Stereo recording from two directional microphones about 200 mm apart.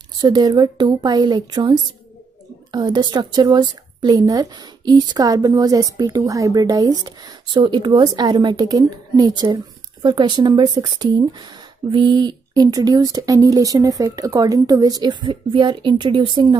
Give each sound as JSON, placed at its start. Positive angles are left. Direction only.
{"t": 0.2, "sound": "speech", "side_deg": -20}